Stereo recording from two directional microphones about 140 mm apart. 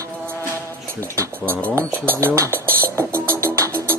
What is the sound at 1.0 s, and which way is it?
Speech, 20° right (ahead or behind).